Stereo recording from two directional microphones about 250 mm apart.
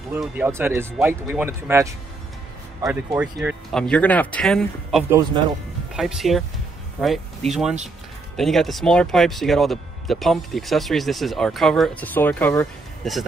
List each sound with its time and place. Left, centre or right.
0.1 s speech: centre
5.4 s speech: centre
5.9 s speech: centre